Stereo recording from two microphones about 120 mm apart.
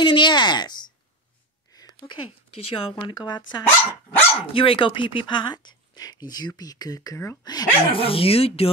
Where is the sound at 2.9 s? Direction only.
35° left (ahead or behind).